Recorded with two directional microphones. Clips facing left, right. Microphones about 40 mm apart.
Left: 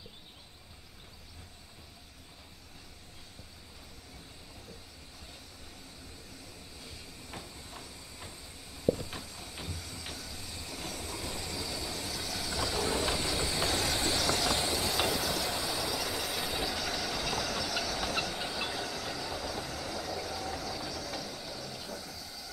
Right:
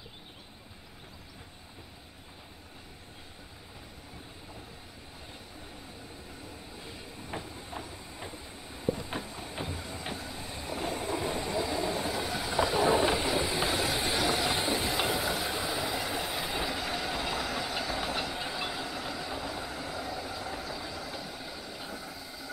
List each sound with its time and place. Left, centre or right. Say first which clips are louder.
6.4 s train: right 5 dB; right